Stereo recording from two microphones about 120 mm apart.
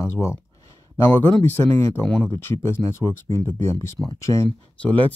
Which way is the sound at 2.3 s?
25° left (ahead or behind).